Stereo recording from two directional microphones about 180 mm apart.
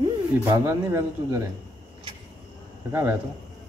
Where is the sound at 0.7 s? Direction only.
15° right (ahead or behind).